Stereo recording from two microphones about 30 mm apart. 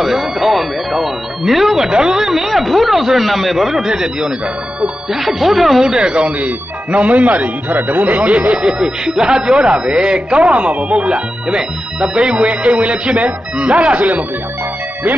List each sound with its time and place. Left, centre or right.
0.0 s speech: centre
1.9 s speech: right
2.1 s speech: centre
5.1 s speech: centre
5.9 s speech: right
6.2 s speech: right
7.7 s speech: right
8.2 s speech: right
8.7 s speech: right
11.5 s speech: right